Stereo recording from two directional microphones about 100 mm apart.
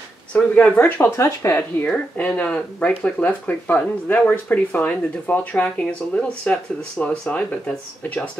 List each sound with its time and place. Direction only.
0.3 s speech: 10° left (ahead or behind); by 1.6 s 25° left (ahead or behind)
1.9 s speech: 15° left (ahead or behind)